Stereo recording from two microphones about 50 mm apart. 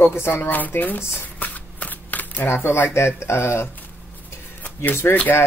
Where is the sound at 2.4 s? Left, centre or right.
Left.